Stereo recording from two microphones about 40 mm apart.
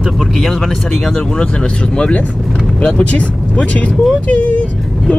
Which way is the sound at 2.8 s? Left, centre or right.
Left.